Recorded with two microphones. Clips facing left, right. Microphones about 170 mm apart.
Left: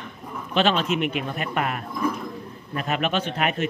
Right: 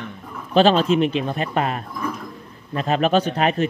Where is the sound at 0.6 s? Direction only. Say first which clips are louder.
Right 7 dB; 35° right (ahead or behind).